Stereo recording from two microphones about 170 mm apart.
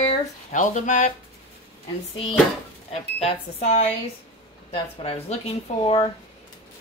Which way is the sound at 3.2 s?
40° left (ahead or behind).